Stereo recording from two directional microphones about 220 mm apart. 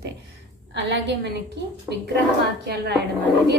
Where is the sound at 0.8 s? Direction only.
50° right (ahead or behind).